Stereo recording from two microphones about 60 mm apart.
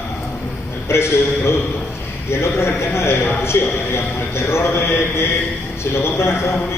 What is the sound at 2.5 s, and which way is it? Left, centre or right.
A man's voice, left.